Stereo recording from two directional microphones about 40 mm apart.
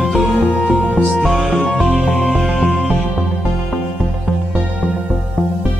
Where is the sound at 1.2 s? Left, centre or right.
Centre.